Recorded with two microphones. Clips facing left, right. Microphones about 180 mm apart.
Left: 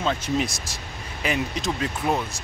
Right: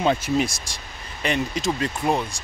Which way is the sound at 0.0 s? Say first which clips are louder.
Right 4 dB; 15° right (ahead or behind).